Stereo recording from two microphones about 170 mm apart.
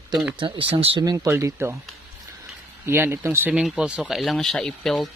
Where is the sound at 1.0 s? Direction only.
20° right (ahead or behind).